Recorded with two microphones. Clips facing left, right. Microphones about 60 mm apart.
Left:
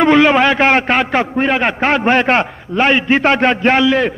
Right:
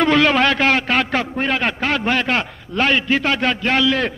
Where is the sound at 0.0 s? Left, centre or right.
Centre.